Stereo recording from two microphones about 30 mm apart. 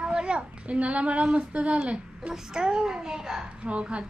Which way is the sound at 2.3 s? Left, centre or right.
Right.